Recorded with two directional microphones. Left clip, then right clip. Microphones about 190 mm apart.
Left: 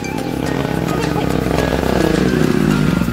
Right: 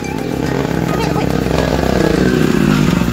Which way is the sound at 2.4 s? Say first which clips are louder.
Right 2 dB; 30° right (ahead or behind).